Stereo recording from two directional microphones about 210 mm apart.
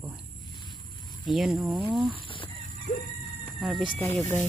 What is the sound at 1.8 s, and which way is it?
Speech, 20° right (ahead or behind).